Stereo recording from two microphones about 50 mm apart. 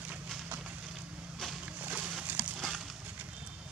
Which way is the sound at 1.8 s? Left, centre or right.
Right.